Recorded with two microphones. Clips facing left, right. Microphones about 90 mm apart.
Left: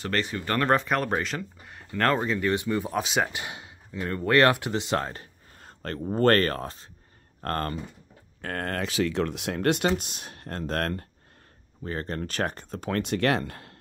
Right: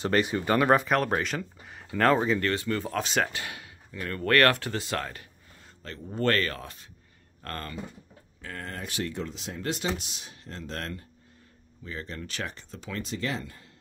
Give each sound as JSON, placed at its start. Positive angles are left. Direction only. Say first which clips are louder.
{"t": 0.0, "sound": "speech", "louder": "right 3 dB", "side_deg": -15}
{"t": 0.6, "sound": "speech", "louder": "even", "side_deg": -5}
{"t": 2.4, "sound": "speech", "louder": "left 3 dB", "side_deg": 15}
{"t": 3.3, "sound": "speech", "louder": "left 1 dB", "side_deg": 20}
{"t": 8.4, "sound": "speech", "louder": "left 8 dB", "side_deg": 60}